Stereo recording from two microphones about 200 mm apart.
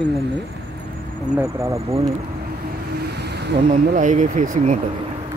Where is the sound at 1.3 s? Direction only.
15° right (ahead or behind).